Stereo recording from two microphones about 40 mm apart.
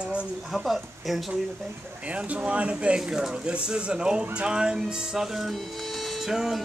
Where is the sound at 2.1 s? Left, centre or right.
Right.